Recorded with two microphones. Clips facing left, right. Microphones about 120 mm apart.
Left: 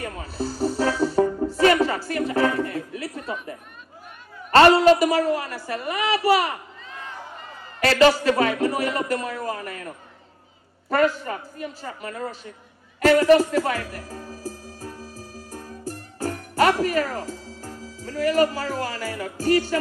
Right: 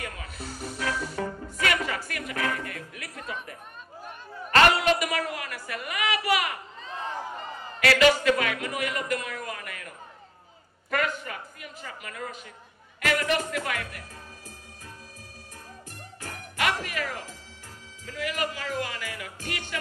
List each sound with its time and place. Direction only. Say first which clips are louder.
0.0 s music: left 9 dB; 30° left (ahead or behind)
4.5 s a woman's voice: left 8 dB; 30° left (ahead or behind)
7.8 s a man's voice: left 4 dB; 35° left (ahead or behind)
13.0 s music: left 11 dB; 35° left (ahead or behind)